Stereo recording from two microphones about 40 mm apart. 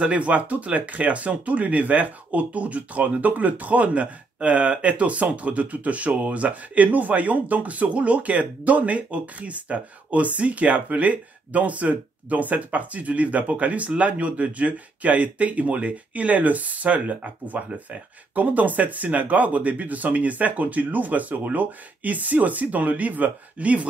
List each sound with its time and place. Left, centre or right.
0.0 s speech: right